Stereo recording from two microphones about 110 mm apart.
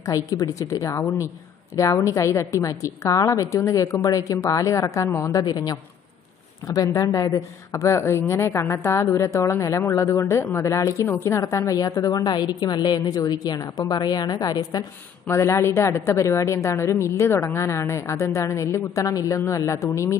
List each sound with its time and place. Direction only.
0.0 s a woman's voice: 30° left (ahead or behind)
5.4 s a woman's voice: 40° left (ahead or behind)
15.2 s a woman's voice: 25° left (ahead or behind)